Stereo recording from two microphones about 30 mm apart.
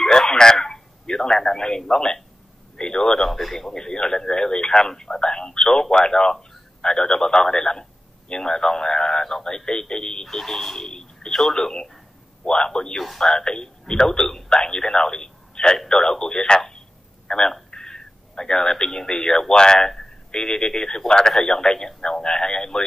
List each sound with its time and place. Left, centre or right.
0.3 s a sound: left
1.9 s speech: left
3.2 s speech: centre
3.7 s speech: left
7.5 s a man's voice: left
10.3 s speech: centre
11.6 s speech: left
13.0 s speech: centre
13.4 s a man's voice: left
17.3 s telephone: left
17.6 s a sound: left
19.0 s speech: left